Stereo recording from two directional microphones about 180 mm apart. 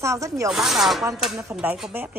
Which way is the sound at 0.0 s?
15° right (ahead or behind).